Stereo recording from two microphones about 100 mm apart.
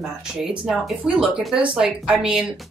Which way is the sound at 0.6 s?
5° right (ahead or behind).